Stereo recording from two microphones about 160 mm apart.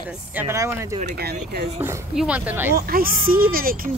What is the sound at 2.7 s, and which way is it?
Speech, 65° right (ahead or behind).